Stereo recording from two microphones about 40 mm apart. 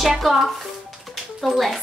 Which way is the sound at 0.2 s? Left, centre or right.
Centre.